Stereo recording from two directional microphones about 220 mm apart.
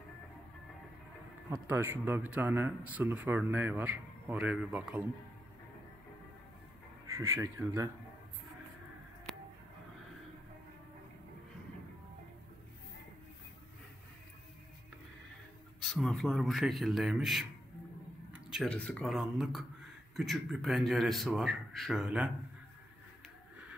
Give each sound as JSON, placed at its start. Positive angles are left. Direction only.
{"t": 1.7, "sound": "speech", "side_deg": -10}
{"t": 7.2, "sound": "speech", "side_deg": -15}
{"t": 15.8, "sound": "speech", "side_deg": 0}